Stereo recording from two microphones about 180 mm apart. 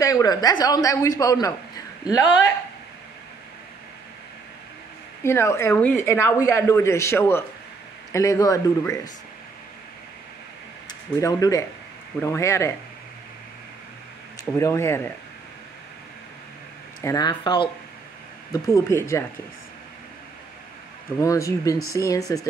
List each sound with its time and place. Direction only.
0.0 s a woman's voice: 20° left (ahead or behind)
5.2 s a woman's voice: 15° left (ahead or behind)
10.9 s speech: 20° left (ahead or behind)
14.6 s speech: 15° left (ahead or behind)
17.0 s a woman's voice: 20° left (ahead or behind)
21.2 s a woman's voice: 20° left (ahead or behind)